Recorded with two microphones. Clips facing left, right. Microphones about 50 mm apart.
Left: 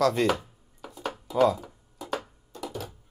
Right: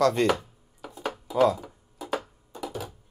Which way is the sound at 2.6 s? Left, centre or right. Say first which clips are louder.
Right 1 dB; centre.